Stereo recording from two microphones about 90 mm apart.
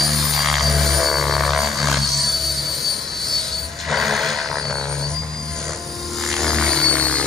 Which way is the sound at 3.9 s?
Centre (ahead or behind).